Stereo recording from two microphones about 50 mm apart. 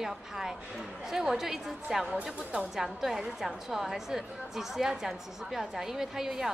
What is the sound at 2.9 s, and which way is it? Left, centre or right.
A woman's voice, centre.